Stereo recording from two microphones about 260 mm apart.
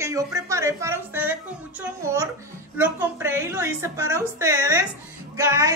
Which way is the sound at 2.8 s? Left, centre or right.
Centre.